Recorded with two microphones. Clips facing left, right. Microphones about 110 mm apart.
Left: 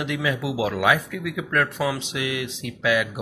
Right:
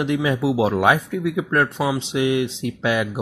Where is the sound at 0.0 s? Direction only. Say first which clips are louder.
Right 5 dB; 30° right (ahead or behind).